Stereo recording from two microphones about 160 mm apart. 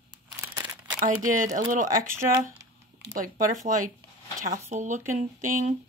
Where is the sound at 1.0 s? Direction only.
55° right (ahead or behind).